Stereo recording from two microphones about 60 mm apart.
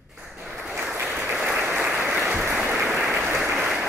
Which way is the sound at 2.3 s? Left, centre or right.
Right.